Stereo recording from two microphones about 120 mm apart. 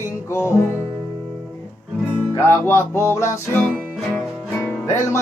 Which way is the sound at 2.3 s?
20° left (ahead or behind).